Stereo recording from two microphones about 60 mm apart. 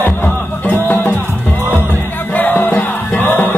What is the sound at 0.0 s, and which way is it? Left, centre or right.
Music, left.